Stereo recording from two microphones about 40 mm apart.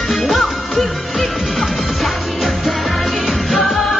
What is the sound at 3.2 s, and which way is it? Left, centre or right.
Music of asia, centre.